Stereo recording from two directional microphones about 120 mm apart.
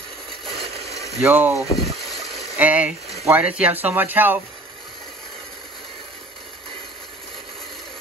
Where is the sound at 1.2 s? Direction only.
15° right (ahead or behind).